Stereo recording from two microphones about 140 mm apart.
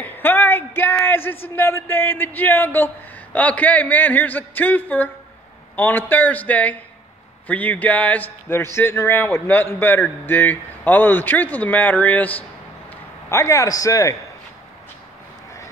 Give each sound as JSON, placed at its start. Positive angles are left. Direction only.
{"t": 0.0, "sound": "a man's voice", "side_deg": 15}